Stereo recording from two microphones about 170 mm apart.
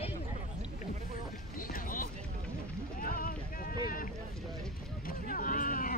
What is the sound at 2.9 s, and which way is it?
Music, 60° left (ahead or behind).